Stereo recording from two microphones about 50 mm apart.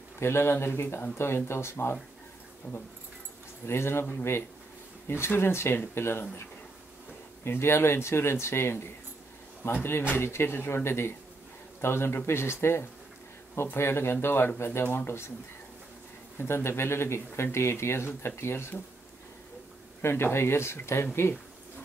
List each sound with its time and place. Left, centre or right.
0.2 s speech: left
2.7 s speech: centre
3.6 s speech: left
7.4 s speech: left
16.3 s speech: left
20.0 s speech: left